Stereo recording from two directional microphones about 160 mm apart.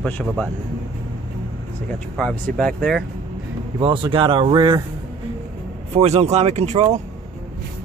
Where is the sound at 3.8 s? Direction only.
30° right (ahead or behind).